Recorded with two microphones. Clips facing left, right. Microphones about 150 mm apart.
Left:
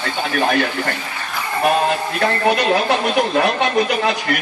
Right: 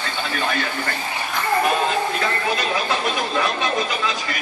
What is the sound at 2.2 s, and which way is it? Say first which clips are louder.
Speech: left 6 dB; 65° left (ahead or behind).